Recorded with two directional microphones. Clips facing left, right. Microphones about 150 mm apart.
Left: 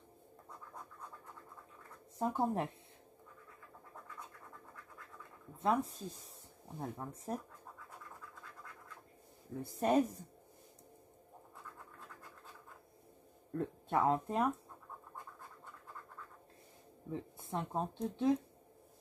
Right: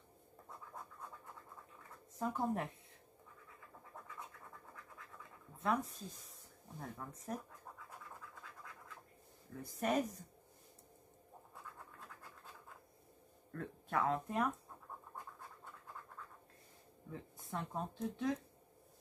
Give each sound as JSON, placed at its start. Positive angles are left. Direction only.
{"t": 2.1, "sound": "speech", "side_deg": 30}
{"t": 5.6, "sound": "speech", "side_deg": 25}
{"t": 9.6, "sound": "speech", "side_deg": 30}
{"t": 13.5, "sound": "speech", "side_deg": 25}
{"t": 17.1, "sound": "speech", "side_deg": 30}